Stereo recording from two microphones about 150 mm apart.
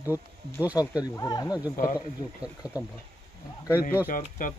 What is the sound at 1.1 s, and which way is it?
Speech, 25° left (ahead or behind).